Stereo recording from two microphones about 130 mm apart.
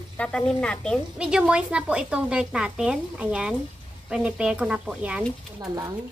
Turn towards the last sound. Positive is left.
turn(degrees=-25)  # may be behind; listen again after turning